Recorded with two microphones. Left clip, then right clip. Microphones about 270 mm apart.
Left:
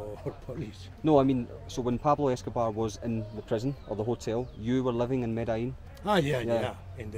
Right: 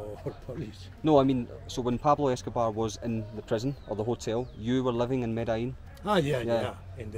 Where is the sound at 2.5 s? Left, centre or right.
Right.